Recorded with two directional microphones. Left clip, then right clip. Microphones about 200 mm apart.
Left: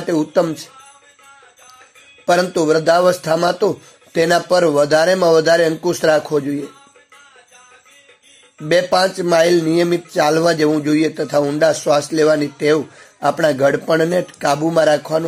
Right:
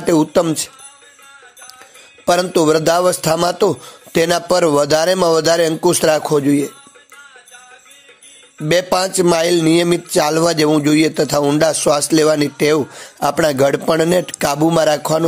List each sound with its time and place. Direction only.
0.0 s speech: 25° right (ahead or behind)
2.2 s speech: 25° right (ahead or behind)
8.6 s speech: 25° right (ahead or behind)